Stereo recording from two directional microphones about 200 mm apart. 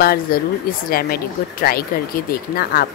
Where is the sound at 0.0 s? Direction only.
50° left (ahead or behind).